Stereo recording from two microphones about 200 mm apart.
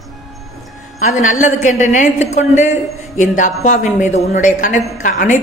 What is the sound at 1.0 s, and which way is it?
A woman's voice, 40° left (ahead or behind).